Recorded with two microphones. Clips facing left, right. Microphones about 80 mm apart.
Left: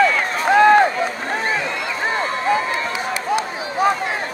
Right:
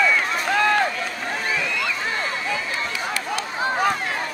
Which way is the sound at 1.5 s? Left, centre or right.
Left.